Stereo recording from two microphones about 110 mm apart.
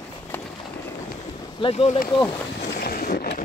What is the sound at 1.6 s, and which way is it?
Speech, 60° left (ahead or behind).